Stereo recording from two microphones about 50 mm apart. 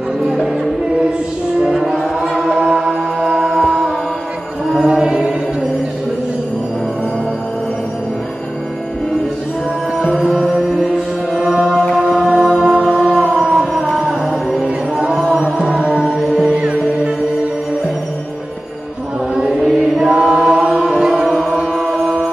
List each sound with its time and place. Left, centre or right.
1.6 s music: centre
4.8 s choir: centre
10.2 s music: centre
11.4 s mantra: centre
11.9 s music: centre
13.3 s a sound: centre
13.9 s music: centre
19.5 s chant: centre
21.3 s music: centre